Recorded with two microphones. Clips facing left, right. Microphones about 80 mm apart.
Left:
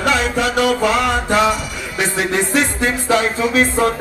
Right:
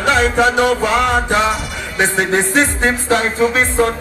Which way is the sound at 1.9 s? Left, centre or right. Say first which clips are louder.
Right 3 dB; right.